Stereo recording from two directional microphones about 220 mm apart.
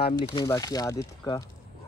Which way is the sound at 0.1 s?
20° left (ahead or behind).